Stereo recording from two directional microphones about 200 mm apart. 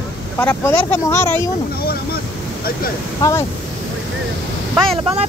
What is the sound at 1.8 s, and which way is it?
Speech, 50° left (ahead or behind).